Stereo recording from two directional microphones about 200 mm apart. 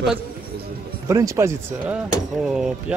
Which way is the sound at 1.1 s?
15° right (ahead or behind).